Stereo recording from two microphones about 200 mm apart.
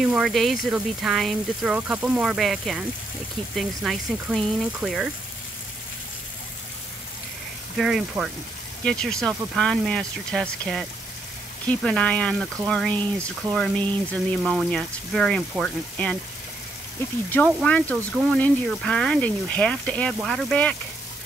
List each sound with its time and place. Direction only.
0.0 s speech: centre (ahead or behind)
7.7 s speech: centre (ahead or behind)
17.5 s speech: 5° left (ahead or behind)